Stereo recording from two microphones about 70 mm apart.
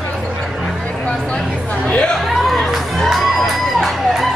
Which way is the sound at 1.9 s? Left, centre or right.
Centre.